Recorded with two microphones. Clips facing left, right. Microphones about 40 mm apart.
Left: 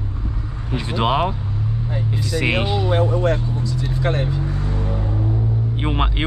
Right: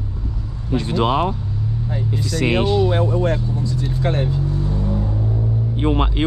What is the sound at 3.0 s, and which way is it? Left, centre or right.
Speech, left.